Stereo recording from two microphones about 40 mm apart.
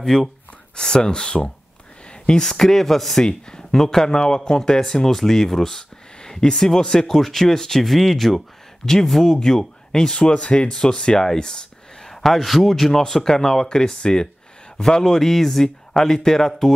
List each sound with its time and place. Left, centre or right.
0.1 s speech: centre
2.0 s a sound: left
2.6 s speech: centre
3.3 s speech: centre